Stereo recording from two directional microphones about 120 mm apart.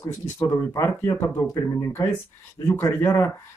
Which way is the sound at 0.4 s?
20° left (ahead or behind).